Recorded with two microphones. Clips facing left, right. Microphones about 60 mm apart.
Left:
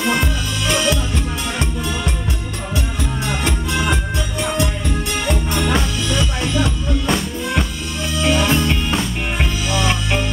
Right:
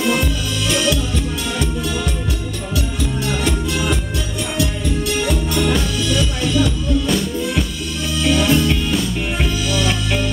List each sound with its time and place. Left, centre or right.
0.0 s music: left
3.3 s music: left